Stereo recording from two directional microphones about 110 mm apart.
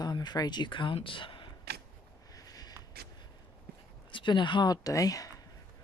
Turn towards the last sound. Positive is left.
turn(degrees=35)  # may be behind; listen again after turning